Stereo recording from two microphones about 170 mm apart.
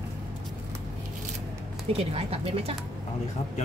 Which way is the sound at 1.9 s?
35° right (ahead or behind).